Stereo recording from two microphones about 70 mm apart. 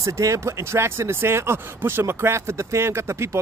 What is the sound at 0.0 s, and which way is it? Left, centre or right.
Speech, right.